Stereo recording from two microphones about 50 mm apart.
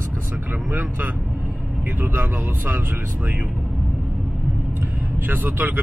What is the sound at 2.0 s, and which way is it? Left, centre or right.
Speech, right.